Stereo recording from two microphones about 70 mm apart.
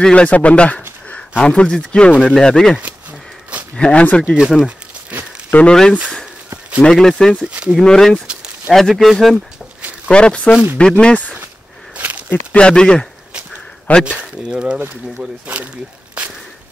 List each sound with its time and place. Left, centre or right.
0.0 s speech: centre
2.3 s speech: centre
4.4 s speech: centre
5.5 s speech: centre
6.8 s speech: centre
7.4 s speech: centre
7.8 s speech: centre
10.0 s speech: centre
12.0 s walk: right
12.5 s speech: centre
14.5 s speech: centre
16.2 s a sound: centre